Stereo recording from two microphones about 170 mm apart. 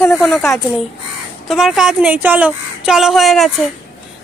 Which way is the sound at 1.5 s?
Centre (ahead or behind).